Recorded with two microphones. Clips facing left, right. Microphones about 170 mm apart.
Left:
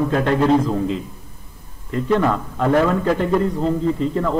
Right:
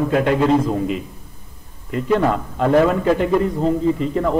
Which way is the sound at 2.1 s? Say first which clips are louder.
Right 1 dB; 25° right (ahead or behind).